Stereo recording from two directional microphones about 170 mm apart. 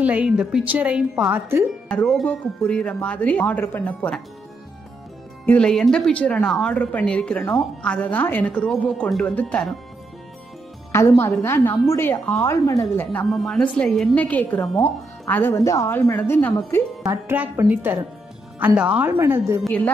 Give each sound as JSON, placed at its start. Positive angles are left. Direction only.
{"t": 0.0, "sound": "a woman's voice", "side_deg": -10}
{"t": 1.9, "sound": "a woman's voice", "side_deg": 5}
{"t": 5.4, "sound": "a woman's voice", "side_deg": 5}
{"t": 10.9, "sound": "a woman's voice", "side_deg": 15}
{"t": 17.0, "sound": "a woman's voice", "side_deg": -15}
{"t": 19.6, "sound": "a woman's voice", "side_deg": 10}